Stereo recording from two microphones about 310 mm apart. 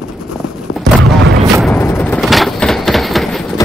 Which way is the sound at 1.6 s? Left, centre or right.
Centre.